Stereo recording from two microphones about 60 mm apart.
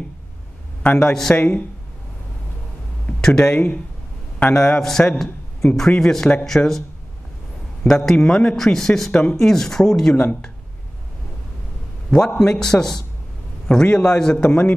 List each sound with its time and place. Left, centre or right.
0.9 s a man's voice: centre
3.1 s a sound: centre
4.4 s a man's voice: centre
7.8 s a man's voice: centre
9.1 s a man's voice: centre
9.4 s a man's voice: centre
12.4 s a man's voice: centre